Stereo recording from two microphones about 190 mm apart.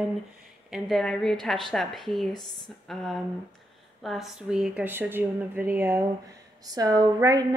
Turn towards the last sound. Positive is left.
turn(degrees=-20)  # may be behind; listen again after turning